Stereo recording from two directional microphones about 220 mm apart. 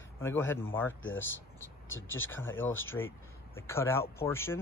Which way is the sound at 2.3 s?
10° left (ahead or behind).